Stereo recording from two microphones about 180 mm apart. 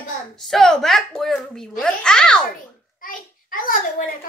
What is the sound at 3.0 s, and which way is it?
A child's voice, 50° left (ahead or behind).